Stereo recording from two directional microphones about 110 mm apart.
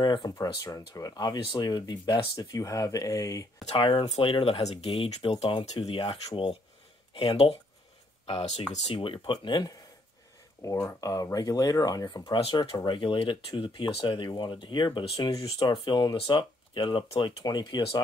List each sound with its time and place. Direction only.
0.0 s speech: 40° left (ahead or behind)
3.7 s speech: 50° left (ahead or behind)
8.3 s speech: 70° left (ahead or behind)
8.9 s speech: 55° left (ahead or behind)
10.6 s speech: 25° left (ahead or behind)